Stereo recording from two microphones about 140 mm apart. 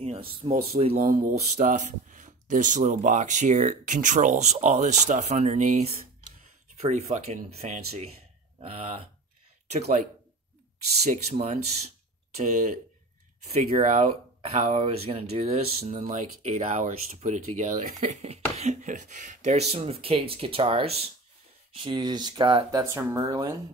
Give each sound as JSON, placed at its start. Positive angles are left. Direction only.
{"t": 0.0, "sound": "a sound", "side_deg": -45}
{"t": 0.7, "sound": "speech", "side_deg": -50}
{"t": 1.0, "sound": "speech", "side_deg": -80}
{"t": 11.0, "sound": "speech", "side_deg": -50}
{"t": 14.4, "sound": "speech", "side_deg": -45}
{"t": 18.0, "sound": "speech", "side_deg": -50}
{"t": 21.7, "sound": "speech", "side_deg": -35}
{"t": 22.7, "sound": "speech", "side_deg": -20}